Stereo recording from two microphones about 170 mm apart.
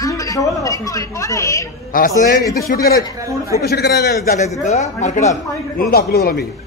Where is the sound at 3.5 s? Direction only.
70° left (ahead or behind).